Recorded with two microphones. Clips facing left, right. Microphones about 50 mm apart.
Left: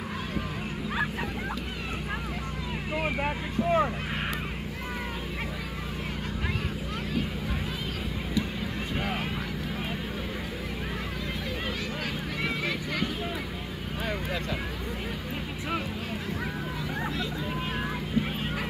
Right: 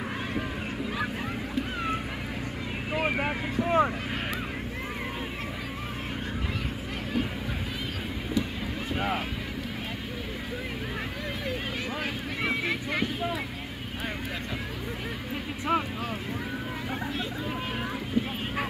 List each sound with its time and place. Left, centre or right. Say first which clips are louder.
3.2 s speech: right 1 dB; centre
12.4 s vehicle: right 2 dB; right